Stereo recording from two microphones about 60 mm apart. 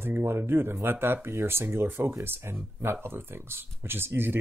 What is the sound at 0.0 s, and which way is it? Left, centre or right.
Speech, right.